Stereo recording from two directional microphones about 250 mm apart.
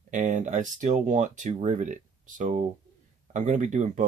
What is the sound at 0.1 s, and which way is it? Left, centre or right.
Speech, right.